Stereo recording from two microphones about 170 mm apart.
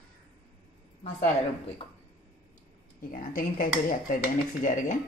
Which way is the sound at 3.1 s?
55° left (ahead or behind).